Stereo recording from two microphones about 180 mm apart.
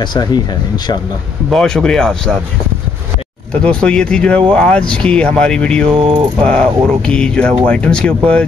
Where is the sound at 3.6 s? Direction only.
5° left (ahead or behind).